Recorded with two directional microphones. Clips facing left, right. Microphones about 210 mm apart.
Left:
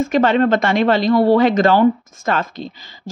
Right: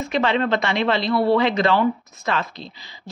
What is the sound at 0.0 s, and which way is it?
Speech, 45° left (ahead or behind).